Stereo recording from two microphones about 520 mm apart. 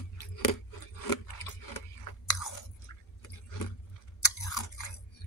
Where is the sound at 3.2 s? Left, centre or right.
Left.